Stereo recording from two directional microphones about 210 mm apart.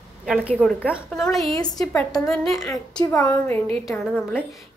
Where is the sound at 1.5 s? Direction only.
15° left (ahead or behind).